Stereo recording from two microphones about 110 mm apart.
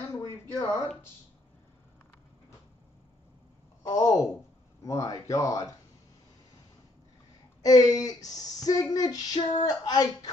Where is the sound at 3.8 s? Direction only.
30° left (ahead or behind).